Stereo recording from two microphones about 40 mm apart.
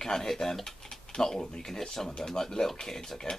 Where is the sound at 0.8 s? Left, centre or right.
Centre.